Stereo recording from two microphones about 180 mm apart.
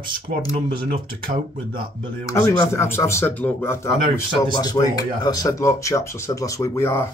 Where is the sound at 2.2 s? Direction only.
15° left (ahead or behind).